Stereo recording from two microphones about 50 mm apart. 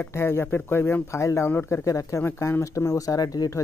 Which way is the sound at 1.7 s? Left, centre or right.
Left.